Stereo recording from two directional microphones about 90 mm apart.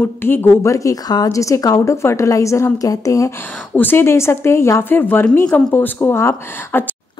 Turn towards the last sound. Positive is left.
turn(degrees=25)  # may be behind; listen again after turning